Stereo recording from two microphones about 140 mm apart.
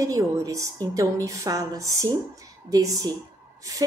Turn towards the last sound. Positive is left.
turn(degrees=-25)  # may be behind; listen again after turning